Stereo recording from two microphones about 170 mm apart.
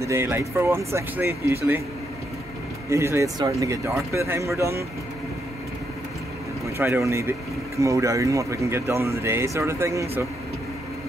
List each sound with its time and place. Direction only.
0.0 s speech: 15° right (ahead or behind)
2.9 s speech: 15° right (ahead or behind)
6.6 s speech: 15° right (ahead or behind)